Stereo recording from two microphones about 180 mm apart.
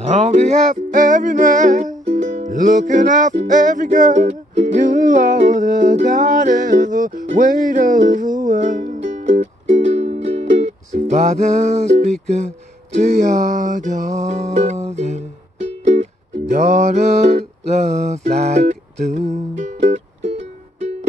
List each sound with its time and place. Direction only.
0.0 s music: 40° right (ahead or behind)
12.3 s a sound: 40° right (ahead or behind)
15.8 s music: 40° right (ahead or behind)